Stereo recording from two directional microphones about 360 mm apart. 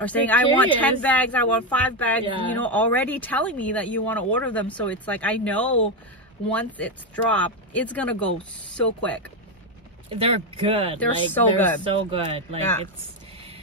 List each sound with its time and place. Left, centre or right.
0.0 s speech: centre
10.1 s speech: centre
11.0 s speech: centre
11.8 s speech: centre